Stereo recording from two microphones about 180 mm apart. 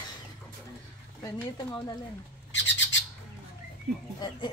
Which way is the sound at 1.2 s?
20° left (ahead or behind).